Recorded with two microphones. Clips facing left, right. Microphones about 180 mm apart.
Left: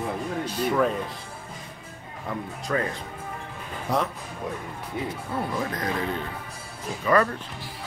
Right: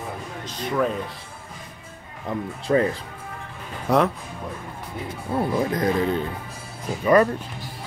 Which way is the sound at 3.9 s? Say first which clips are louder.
Right 6 dB; 65° right (ahead or behind).